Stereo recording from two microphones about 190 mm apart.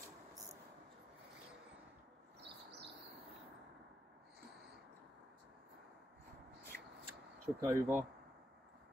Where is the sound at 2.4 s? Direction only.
65° right (ahead or behind).